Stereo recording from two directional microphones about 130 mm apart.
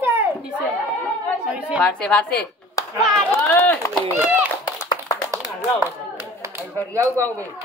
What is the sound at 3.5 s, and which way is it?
Speech, 20° left (ahead or behind).